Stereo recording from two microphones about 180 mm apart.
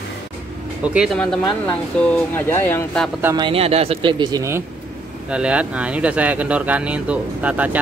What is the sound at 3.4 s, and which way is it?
A man's voice, 30° right (ahead or behind).